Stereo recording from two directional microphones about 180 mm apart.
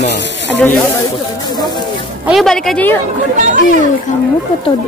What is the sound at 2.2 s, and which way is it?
Speech, centre (ahead or behind).